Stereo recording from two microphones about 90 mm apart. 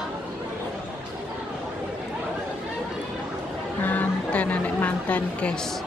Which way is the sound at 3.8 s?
20° left (ahead or behind).